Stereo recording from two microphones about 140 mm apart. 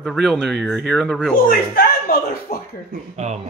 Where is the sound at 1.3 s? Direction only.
90° left.